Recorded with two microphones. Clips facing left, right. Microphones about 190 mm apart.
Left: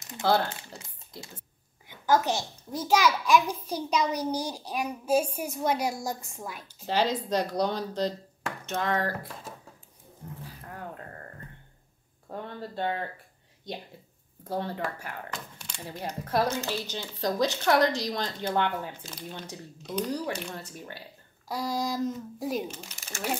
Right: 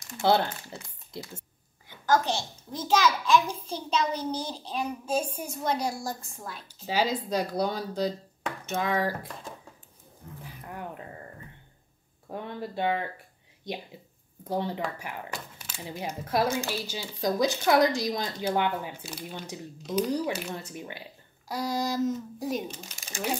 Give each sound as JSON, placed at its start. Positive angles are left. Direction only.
{"t": 1.9, "sound": "a child's voice", "side_deg": 15}
{"t": 6.7, "sound": "speech", "side_deg": -10}
{"t": 10.7, "sound": "speech", "side_deg": -15}
{"t": 12.3, "sound": "speech", "side_deg": -15}
{"t": 14.5, "sound": "a child's voice", "side_deg": -15}
{"t": 20.7, "sound": "speech", "side_deg": -15}
{"t": 21.5, "sound": "a child's voice", "side_deg": 0}
{"t": 22.7, "sound": "speech", "side_deg": -15}